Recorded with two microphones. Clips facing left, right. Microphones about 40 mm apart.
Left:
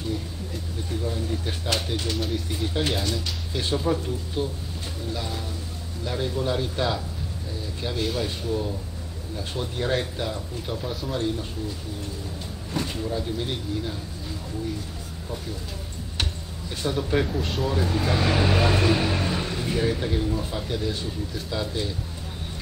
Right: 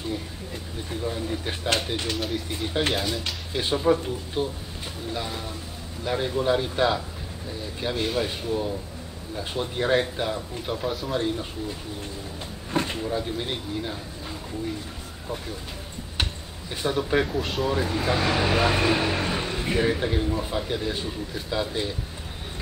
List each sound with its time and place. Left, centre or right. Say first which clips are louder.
0.8 s speech: right 1 dB; centre
2.1 s speech: even; centre
2.5 s speech: right 2 dB; centre
10.9 s speech: right 2 dB; centre
11.1 s speech: left 1 dB; centre
12.7 s a sound: right 3 dB; right
13.0 s speech: even; centre
16.8 s speech: right 1 dB; centre